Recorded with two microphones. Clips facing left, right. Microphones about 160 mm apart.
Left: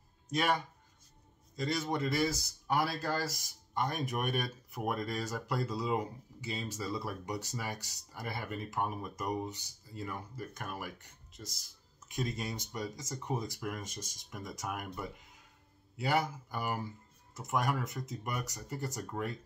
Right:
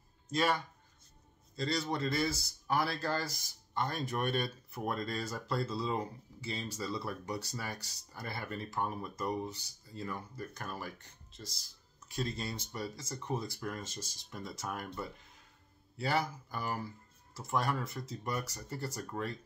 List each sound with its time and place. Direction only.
0.3 s speech: 15° left (ahead or behind)
1.6 s speech: 15° left (ahead or behind)
12.1 s speech: 15° left (ahead or behind)